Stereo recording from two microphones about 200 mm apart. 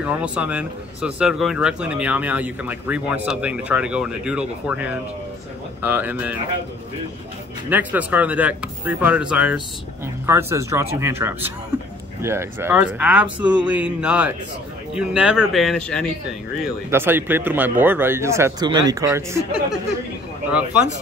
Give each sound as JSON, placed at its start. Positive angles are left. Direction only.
{"t": 0.0, "sound": "speech", "side_deg": -5}
{"t": 7.7, "sound": "speech", "side_deg": -10}
{"t": 16.6, "sound": "speech", "side_deg": -10}